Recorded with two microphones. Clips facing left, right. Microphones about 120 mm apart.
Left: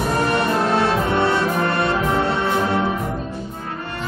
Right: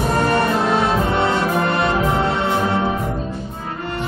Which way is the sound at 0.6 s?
20° right (ahead or behind).